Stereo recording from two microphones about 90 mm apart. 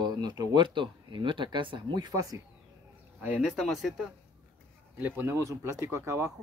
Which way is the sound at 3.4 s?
5° right (ahead or behind).